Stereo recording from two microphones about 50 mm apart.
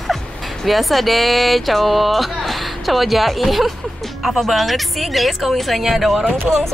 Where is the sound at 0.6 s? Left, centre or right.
Centre.